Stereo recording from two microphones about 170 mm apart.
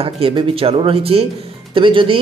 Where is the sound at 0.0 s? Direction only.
35° right (ahead or behind).